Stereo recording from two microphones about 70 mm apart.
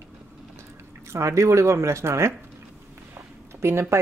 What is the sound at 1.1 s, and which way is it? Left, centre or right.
Speech, right.